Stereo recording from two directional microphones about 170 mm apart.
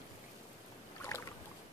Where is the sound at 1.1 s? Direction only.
20° left (ahead or behind).